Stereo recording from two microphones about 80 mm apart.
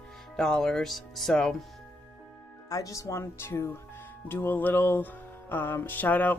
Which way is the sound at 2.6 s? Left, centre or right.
Left.